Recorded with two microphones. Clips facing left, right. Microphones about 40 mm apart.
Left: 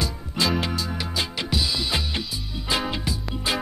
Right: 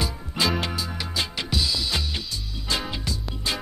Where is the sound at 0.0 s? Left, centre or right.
Centre.